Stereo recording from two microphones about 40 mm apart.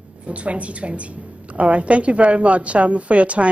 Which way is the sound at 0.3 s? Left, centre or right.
Right.